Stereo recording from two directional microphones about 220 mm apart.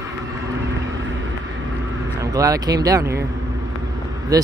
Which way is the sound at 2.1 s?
15° right (ahead or behind).